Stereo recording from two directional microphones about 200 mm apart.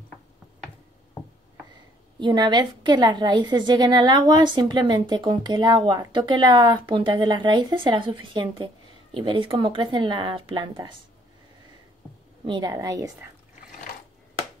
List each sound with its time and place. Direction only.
2.1 s a woman's voice: 20° right (ahead or behind)
12.4 s a woman's voice: 20° right (ahead or behind)